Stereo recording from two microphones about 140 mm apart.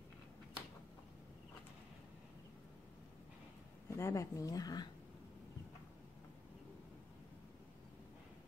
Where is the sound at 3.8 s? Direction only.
20° left (ahead or behind).